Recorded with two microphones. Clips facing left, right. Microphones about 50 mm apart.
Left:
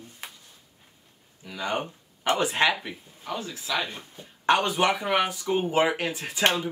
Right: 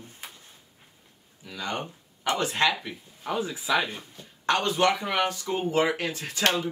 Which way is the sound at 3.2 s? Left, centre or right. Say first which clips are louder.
Right 4 dB; centre.